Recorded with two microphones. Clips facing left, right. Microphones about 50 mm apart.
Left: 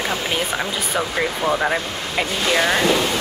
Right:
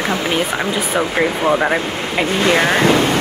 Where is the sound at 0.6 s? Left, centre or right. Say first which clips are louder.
Right 5 dB; right.